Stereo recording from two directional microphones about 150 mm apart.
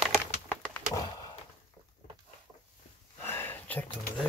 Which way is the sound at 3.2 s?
15° left (ahead or behind).